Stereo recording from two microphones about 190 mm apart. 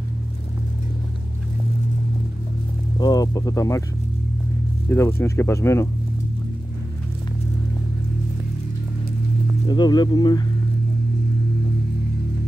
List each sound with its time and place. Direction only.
3.0 s speech: 20° left (ahead or behind)
4.8 s speech: 15° left (ahead or behind)
9.7 s speech: 20° left (ahead or behind)